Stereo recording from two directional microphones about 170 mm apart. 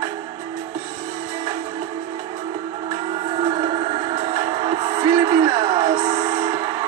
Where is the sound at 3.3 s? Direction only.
35° right (ahead or behind).